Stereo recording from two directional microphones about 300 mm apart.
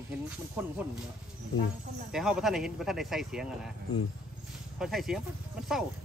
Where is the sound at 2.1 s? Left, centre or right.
Centre.